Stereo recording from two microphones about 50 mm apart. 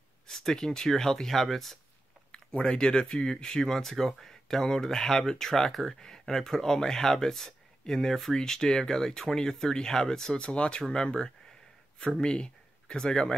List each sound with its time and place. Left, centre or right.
0.3 s speech: centre
2.3 s speech: centre